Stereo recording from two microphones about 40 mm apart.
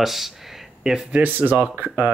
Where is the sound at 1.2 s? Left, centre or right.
Right.